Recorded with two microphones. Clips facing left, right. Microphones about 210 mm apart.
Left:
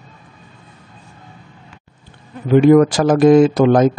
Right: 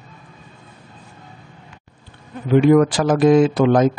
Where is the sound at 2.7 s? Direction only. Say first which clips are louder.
Left 4 dB; 45° left (ahead or behind).